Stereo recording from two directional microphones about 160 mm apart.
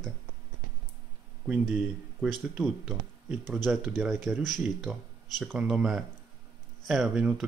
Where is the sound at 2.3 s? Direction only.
Centre (ahead or behind).